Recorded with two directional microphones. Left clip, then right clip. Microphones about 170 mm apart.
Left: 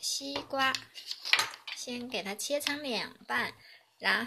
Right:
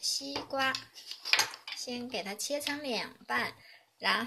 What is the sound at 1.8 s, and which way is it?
Speech, 15° left (ahead or behind).